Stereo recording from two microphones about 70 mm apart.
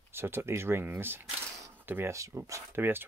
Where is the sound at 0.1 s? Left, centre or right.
Right.